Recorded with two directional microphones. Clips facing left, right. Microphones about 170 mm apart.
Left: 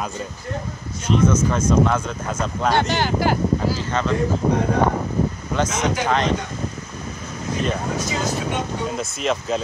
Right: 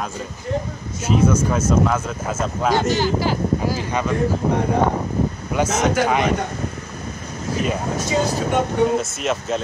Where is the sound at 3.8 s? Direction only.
10° right (ahead or behind).